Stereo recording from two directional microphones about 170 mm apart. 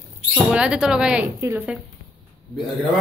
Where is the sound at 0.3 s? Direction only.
5° right (ahead or behind).